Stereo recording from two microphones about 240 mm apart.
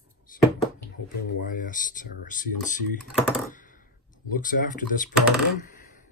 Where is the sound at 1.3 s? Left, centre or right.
Left.